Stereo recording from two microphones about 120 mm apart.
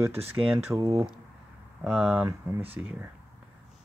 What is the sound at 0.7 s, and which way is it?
Speech, 30° right (ahead or behind).